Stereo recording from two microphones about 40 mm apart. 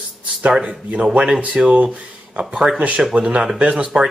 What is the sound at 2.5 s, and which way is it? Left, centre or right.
Speech, centre.